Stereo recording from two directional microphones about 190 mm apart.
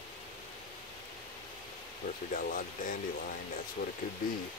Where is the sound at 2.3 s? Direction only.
45° left (ahead or behind).